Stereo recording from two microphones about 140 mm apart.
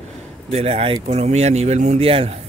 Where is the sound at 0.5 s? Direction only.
45° right (ahead or behind).